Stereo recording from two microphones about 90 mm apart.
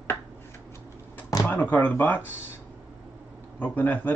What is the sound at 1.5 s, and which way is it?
Speech, 20° left (ahead or behind).